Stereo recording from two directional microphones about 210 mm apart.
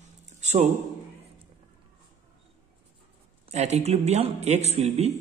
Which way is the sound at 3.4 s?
30° right (ahead or behind).